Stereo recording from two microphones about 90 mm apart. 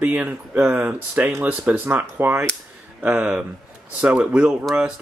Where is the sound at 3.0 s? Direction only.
15° right (ahead or behind).